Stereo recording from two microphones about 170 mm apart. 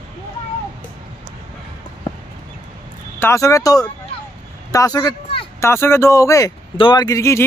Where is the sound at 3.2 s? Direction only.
20° left (ahead or behind).